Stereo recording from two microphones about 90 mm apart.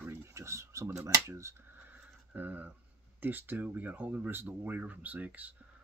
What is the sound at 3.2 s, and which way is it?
Speech, 20° right (ahead or behind).